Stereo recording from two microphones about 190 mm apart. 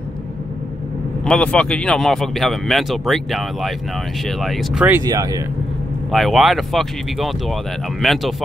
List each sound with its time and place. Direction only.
1.2 s speech: 5° left (ahead or behind)
5.0 s speech: 20° right (ahead or behind)
6.1 s speech: centre (ahead or behind)